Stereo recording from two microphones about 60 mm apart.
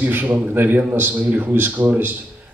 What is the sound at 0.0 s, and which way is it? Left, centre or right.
A man's voice, right.